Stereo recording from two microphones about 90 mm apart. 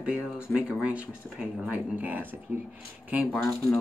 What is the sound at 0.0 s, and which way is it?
Speech, 10° right (ahead or behind).